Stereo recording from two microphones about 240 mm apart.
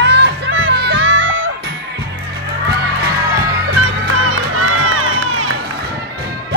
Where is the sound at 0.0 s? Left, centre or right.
Right.